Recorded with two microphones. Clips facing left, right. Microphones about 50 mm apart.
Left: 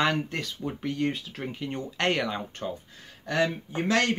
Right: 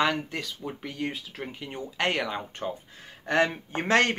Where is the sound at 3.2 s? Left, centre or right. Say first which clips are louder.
Right 2 dB; right.